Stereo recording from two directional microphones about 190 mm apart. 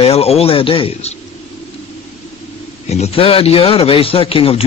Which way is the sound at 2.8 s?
35° left (ahead or behind).